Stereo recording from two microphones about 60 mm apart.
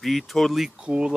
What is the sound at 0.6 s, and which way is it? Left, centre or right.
Speech, centre.